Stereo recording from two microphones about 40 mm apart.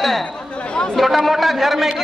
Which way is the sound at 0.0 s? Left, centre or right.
Centre.